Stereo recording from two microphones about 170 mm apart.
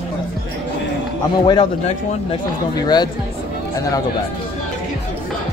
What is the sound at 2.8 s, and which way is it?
Speech, 25° left (ahead or behind).